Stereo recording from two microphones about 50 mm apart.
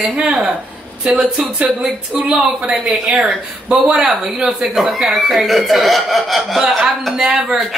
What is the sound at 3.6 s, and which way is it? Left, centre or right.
Speech, right.